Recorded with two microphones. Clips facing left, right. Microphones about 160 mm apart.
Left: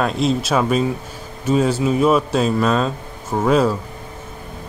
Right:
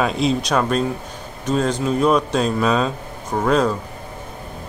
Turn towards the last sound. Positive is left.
turn(degrees=5)  # may be behind; listen again after turning